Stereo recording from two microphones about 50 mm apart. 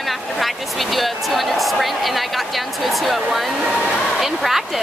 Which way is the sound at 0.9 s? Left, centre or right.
Centre.